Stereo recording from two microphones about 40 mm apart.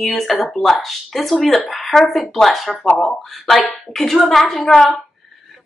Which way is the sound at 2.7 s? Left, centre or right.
Left.